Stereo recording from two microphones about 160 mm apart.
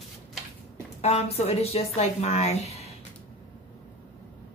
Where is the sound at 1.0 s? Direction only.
40° left (ahead or behind).